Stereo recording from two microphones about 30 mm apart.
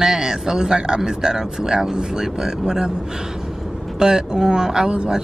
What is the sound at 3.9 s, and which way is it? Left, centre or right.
Speech, right.